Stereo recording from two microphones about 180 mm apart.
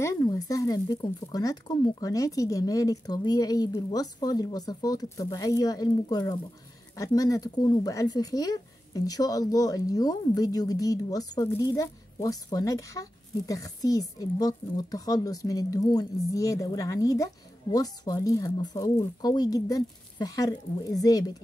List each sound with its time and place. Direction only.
0.0 s speech: 20° left (ahead or behind)